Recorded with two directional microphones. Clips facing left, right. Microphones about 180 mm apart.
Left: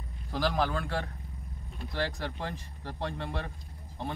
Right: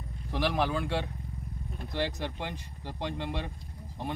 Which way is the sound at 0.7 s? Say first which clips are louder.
Right 2 dB; 15° right (ahead or behind).